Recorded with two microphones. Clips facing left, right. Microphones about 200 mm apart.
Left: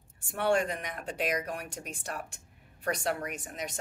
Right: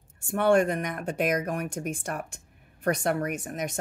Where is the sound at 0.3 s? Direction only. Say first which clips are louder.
Right 6 dB; 50° right (ahead or behind).